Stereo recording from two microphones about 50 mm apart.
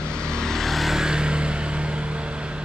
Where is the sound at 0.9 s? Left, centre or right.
Centre.